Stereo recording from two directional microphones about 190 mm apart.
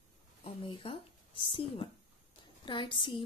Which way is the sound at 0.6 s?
25° left (ahead or behind).